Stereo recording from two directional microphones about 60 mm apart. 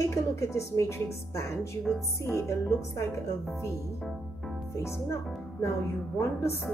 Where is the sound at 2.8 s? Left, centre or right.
Left.